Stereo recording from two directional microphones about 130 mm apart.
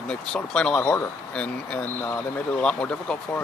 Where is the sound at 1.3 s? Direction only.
10° left (ahead or behind).